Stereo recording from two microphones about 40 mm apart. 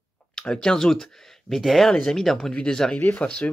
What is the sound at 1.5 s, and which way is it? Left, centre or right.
Speech, centre.